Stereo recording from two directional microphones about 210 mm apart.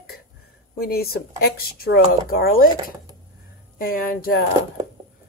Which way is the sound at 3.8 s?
45° left (ahead or behind).